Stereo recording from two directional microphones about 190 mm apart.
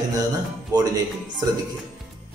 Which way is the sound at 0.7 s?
20° right (ahead or behind).